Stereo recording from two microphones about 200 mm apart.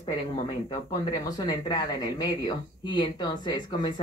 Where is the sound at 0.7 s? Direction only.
20° left (ahead or behind).